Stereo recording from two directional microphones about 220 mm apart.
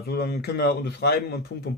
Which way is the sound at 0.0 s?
45° left (ahead or behind).